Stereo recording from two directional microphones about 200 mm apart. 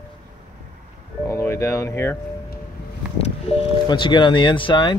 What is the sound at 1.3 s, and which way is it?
Speech, 15° left (ahead or behind).